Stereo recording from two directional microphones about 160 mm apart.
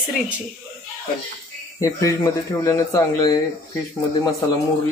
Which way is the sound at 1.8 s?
20° left (ahead or behind).